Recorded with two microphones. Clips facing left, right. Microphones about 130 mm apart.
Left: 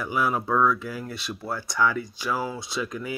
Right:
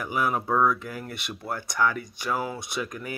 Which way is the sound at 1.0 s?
55° right (ahead or behind).